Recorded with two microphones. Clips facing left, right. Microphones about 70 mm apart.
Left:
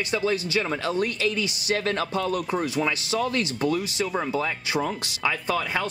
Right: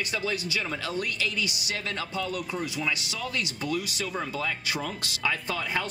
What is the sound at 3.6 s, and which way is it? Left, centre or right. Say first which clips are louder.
Speech: left 6 dB; left.